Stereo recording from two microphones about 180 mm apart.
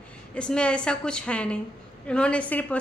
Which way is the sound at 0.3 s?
5° left (ahead or behind).